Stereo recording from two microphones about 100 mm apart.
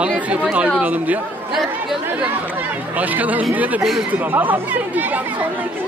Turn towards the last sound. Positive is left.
turn(degrees=-20)  # may be behind; listen again after turning